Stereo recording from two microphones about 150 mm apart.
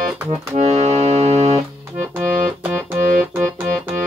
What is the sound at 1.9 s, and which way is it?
Organ, 10° right (ahead or behind).